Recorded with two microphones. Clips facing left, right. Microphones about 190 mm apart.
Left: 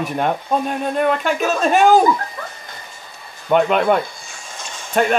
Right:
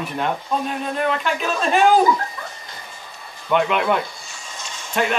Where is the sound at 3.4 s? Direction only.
40° left (ahead or behind).